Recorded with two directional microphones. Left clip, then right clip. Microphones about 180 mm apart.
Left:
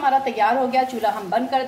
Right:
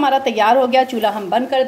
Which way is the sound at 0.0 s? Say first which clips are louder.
Right 4 dB; 45° right (ahead or behind).